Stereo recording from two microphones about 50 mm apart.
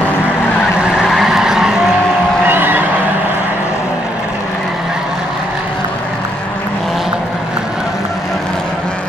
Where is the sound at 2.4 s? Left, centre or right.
Right.